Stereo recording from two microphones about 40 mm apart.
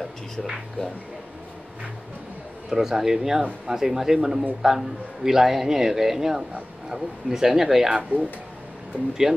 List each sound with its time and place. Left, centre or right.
2.7 s a man's voice: centre
8.1 s speech: right
9.2 s a man's voice: centre